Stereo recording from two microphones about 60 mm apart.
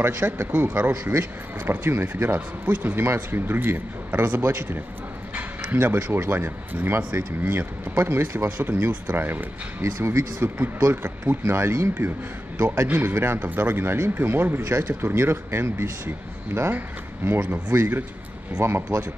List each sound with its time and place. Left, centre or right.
0.0 s speech: right
16.7 s speech: right